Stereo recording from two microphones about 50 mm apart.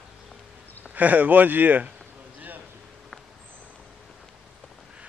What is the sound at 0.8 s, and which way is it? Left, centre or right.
A man's voice, right.